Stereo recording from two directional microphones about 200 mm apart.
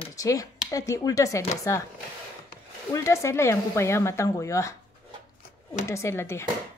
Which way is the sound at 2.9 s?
15° left (ahead or behind).